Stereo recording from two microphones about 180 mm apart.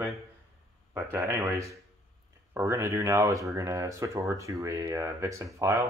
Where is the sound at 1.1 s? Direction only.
15° right (ahead or behind).